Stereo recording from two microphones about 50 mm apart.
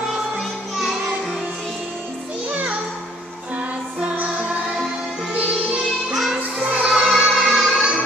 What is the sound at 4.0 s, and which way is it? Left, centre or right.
Music, right.